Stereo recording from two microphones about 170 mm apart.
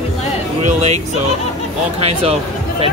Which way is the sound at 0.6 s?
40° right (ahead or behind).